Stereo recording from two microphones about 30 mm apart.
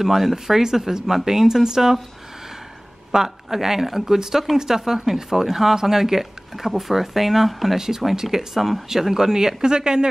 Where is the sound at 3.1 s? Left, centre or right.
Centre.